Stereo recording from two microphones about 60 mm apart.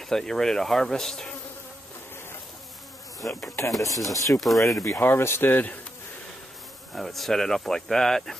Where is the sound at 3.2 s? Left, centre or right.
Left.